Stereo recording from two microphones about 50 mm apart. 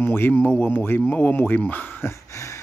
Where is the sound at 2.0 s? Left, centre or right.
Left.